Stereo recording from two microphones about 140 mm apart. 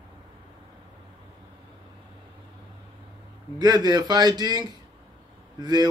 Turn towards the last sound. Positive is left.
turn(degrees=-30)  # may be behind; listen again after turning